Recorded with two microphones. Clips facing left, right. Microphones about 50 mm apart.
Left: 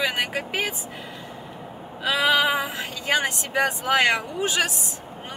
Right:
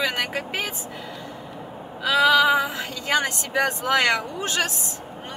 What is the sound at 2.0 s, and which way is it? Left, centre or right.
Speech, centre.